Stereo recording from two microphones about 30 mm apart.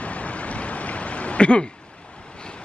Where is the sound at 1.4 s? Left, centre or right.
Left.